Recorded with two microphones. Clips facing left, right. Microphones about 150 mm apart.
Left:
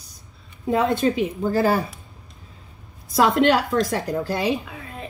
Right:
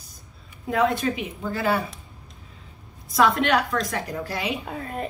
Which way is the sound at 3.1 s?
30° left (ahead or behind).